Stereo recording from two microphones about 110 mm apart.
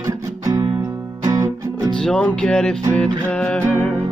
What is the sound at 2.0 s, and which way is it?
Music, 5° left (ahead or behind).